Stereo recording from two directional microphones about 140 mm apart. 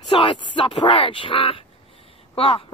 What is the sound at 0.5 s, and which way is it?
Speech, 35° left (ahead or behind).